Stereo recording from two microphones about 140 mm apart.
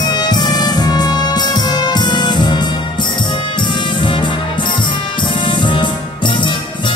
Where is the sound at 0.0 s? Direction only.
30° left (ahead or behind).